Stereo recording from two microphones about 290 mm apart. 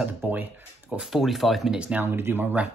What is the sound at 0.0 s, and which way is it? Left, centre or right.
Speech, centre.